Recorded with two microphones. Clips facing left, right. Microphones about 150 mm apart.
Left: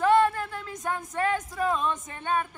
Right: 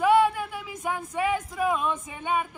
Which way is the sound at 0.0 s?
10° right (ahead or behind).